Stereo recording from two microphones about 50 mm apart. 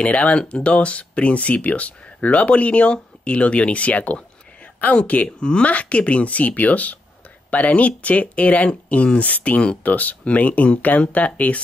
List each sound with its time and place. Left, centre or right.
0.0 s speech: left